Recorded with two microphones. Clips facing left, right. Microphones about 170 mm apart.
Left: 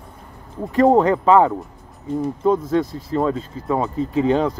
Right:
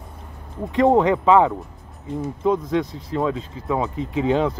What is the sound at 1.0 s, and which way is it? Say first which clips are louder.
Speech: left 1 dB; centre (ahead or behind).